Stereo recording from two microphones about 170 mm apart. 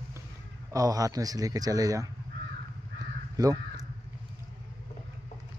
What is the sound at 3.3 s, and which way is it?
Crow, 20° right (ahead or behind).